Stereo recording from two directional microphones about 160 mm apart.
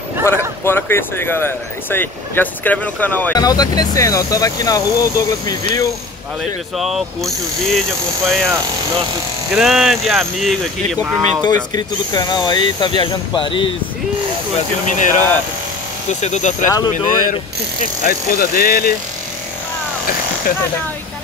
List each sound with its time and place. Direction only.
0.2 s speech: 15° left (ahead or behind)
3.3 s speech: 25° left (ahead or behind)
6.8 s speech: centre (ahead or behind)
11.4 s speech: 25° left (ahead or behind)
14.9 s speech: 50° left (ahead or behind)
16.6 s speech: 20° left (ahead or behind)
16.9 s speech: 55° left (ahead or behind)